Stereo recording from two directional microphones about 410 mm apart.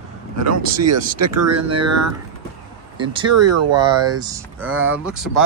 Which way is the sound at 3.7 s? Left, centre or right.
Centre.